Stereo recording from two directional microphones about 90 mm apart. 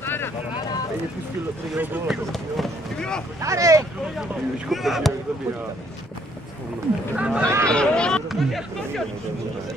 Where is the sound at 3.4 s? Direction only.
35° right (ahead or behind).